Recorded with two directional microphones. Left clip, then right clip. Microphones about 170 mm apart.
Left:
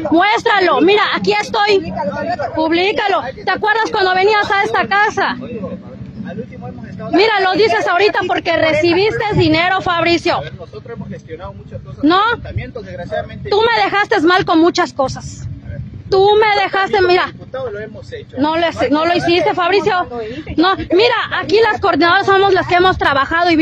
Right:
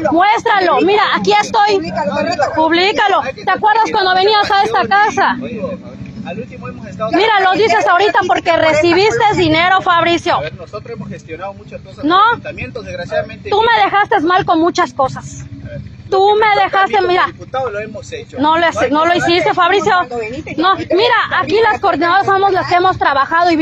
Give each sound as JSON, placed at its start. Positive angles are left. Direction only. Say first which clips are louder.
{"t": 0.1, "sound": "a woman's voice", "louder": "left 1 dB", "side_deg": 35}
{"t": 1.5, "sound": "speech", "louder": "right 2 dB", "side_deg": 25}
{"t": 7.2, "sound": "speech", "louder": "right 1 dB", "side_deg": 25}
{"t": 13.5, "sound": "a woman's voice", "louder": "right 2 dB", "side_deg": 30}
{"t": 16.1, "sound": "a woman's voice", "louder": "even", "side_deg": 30}
{"t": 17.5, "sound": "speech", "louder": "right 5 dB", "side_deg": 0}
{"t": 18.4, "sound": "speech", "louder": "right 3 dB", "side_deg": 25}
{"t": 20.5, "sound": "a woman's voice", "louder": "even", "side_deg": 35}